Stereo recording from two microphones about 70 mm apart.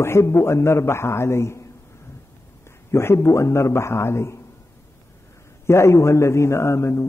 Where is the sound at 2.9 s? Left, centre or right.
Left.